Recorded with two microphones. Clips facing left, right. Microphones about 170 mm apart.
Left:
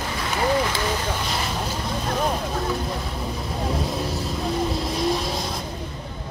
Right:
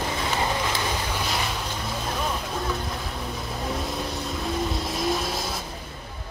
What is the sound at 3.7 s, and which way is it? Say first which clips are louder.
Vehicle: left 3 dB; centre (ahead or behind).